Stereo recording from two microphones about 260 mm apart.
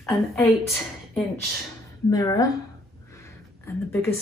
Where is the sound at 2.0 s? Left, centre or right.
Centre.